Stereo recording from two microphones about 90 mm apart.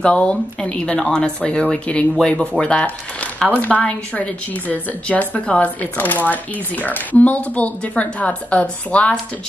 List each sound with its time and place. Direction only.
0.0 s speech: 15° left (ahead or behind)